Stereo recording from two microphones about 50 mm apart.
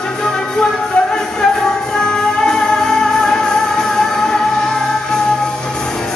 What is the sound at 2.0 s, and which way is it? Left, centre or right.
Music, centre.